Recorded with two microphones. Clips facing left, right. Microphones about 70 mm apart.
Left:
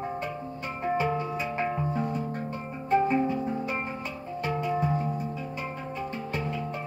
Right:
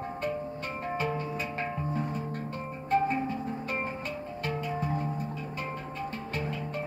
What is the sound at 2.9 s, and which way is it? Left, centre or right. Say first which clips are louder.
Music: left 4 dB; centre.